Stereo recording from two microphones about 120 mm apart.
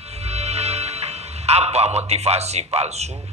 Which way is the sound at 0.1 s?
60° right (ahead or behind).